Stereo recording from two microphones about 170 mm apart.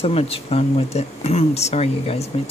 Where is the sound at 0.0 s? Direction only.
35° left (ahead or behind).